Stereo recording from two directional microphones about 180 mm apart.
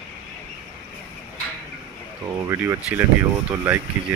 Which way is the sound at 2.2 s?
15° right (ahead or behind).